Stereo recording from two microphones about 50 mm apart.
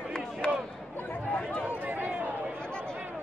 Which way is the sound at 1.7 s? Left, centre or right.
Right.